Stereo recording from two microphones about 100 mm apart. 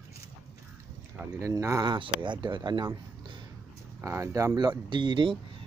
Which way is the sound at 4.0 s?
30° right (ahead or behind).